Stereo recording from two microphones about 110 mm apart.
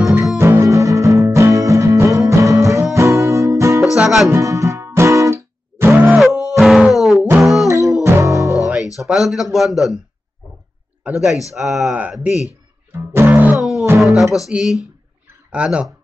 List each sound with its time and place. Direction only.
0.0 s music: 30° right (ahead or behind)
3.8 s music: 5° right (ahead or behind)
4.3 s music: 30° right (ahead or behind)
6.1 s music: centre (ahead or behind)
7.6 s music: 30° right (ahead or behind)
8.7 s speech: centre (ahead or behind)
11.1 s speech: 5° right (ahead or behind)
12.0 s speech: 15° right (ahead or behind)
12.9 s music: 20° right (ahead or behind)
13.6 s music: 5° right (ahead or behind)
14.5 s speech: 5° right (ahead or behind)